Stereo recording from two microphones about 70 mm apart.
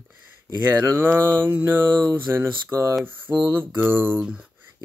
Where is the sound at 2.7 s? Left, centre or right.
Right.